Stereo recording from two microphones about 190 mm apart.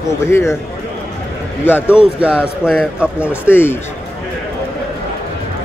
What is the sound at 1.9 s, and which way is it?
A man's voice, 5° right (ahead or behind).